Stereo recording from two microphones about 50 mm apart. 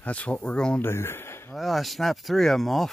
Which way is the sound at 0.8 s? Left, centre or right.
Left.